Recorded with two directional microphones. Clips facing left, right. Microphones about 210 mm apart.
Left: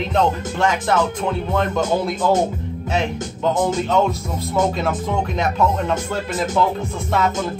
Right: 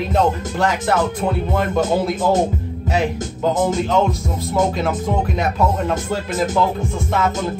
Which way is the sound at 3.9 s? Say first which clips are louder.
Right 1 dB; centre (ahead or behind).